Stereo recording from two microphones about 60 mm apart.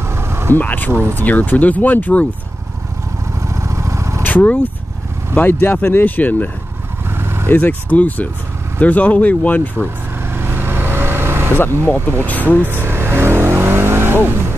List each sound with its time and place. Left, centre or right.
0.0 s vehicle: right
0.6 s speech: left
3.4 s vehicle: right
4.2 s vehicle: left
5.3 s speech: left
7.1 s vehicle: right
7.4 s speech: left
10.2 s vehicle: right
12.3 s speech: left
12.6 s vehicle: right